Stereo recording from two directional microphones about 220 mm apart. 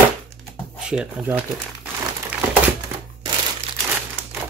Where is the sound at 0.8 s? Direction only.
5° right (ahead or behind).